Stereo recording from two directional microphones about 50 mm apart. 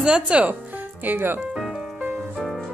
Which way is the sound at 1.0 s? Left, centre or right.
Right.